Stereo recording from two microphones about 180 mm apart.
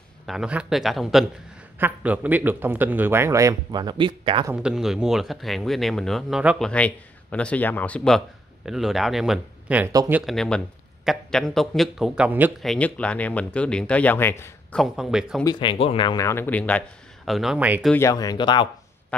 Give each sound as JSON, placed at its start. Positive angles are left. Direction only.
{"t": 0.3, "sound": "a man's voice", "side_deg": -5}
{"t": 4.6, "sound": "speech", "side_deg": -5}
{"t": 6.7, "sound": "a man's voice", "side_deg": 5}
{"t": 10.2, "sound": "speech", "side_deg": 0}
{"t": 12.6, "sound": "speech", "side_deg": 5}
{"t": 15.4, "sound": "speech", "side_deg": 25}
{"t": 17.9, "sound": "speech", "side_deg": 20}